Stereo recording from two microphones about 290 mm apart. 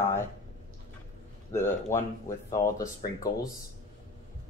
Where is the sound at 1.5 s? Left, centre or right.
Centre.